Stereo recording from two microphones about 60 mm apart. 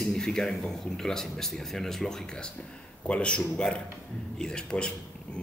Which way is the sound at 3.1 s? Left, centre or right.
Centre.